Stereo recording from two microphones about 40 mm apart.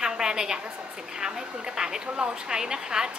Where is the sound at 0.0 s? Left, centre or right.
Centre.